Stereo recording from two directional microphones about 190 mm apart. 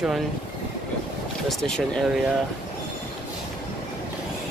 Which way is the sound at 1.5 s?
Centre (ahead or behind).